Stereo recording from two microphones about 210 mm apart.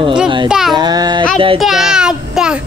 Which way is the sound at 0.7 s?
20° right (ahead or behind).